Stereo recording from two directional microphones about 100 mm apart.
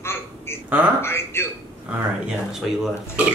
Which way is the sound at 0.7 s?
15° right (ahead or behind).